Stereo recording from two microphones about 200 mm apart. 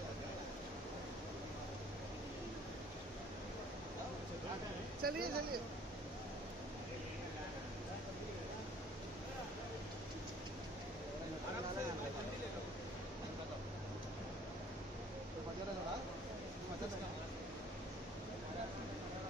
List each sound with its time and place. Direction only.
5.0 s speech: 50° right (ahead or behind)